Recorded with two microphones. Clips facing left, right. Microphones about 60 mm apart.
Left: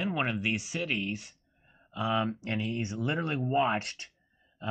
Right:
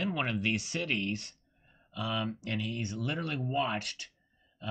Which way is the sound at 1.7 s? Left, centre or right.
Left.